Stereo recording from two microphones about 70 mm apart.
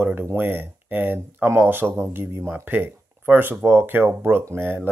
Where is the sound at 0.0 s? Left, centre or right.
Right.